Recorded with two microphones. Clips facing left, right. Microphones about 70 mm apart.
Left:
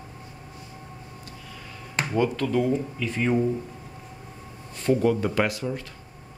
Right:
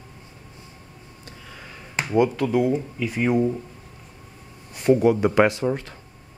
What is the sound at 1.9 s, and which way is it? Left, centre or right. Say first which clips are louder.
Speech: right 4 dB; centre.